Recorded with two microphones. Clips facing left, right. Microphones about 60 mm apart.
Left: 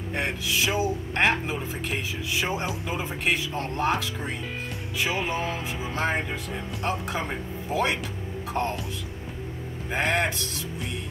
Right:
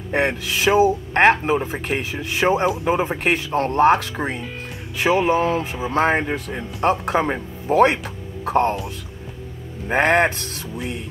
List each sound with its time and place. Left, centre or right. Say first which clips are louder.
0.1 s speech: right 8 dB; right
5.2 s music: right 10 dB; right
5.9 s speech: right 9 dB; right
9.8 s music: right 9 dB; right